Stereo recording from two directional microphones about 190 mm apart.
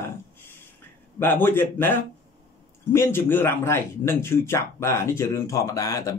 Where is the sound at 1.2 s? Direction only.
10° left (ahead or behind).